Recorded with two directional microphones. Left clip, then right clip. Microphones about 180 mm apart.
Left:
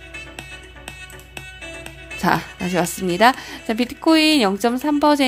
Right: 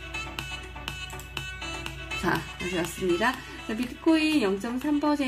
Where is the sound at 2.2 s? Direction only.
55° left (ahead or behind).